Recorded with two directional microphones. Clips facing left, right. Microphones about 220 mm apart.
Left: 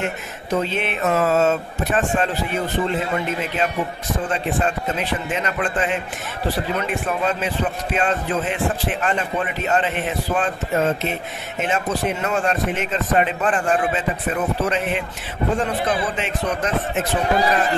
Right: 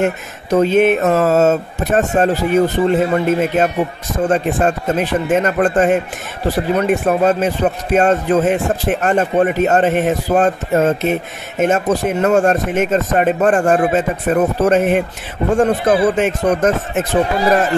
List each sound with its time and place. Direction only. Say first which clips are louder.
0.0 s a man's voice: right 9 dB; 45° right (ahead or behind)